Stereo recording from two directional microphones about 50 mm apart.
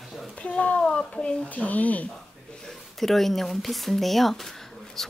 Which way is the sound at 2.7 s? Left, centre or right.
Centre.